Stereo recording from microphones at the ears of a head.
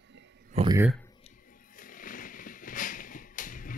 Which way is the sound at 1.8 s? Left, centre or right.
Left.